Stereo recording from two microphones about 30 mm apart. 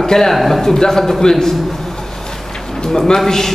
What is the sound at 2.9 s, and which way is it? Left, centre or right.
Speech, centre.